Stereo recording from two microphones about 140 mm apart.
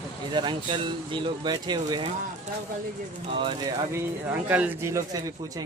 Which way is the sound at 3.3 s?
35° right (ahead or behind).